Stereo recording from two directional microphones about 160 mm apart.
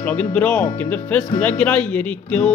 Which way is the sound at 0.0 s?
10° left (ahead or behind).